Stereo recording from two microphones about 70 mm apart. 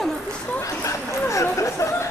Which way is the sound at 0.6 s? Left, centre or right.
Left.